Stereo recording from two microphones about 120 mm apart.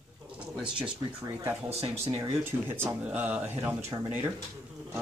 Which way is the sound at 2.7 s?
15° right (ahead or behind).